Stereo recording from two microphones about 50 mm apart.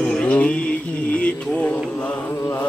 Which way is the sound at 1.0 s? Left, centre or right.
Left.